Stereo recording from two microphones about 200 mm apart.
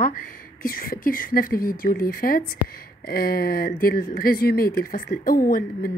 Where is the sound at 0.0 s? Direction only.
45° left (ahead or behind).